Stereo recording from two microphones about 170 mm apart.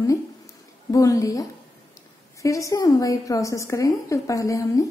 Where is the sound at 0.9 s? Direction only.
20° left (ahead or behind).